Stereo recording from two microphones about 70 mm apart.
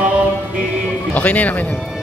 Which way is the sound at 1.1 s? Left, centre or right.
Left.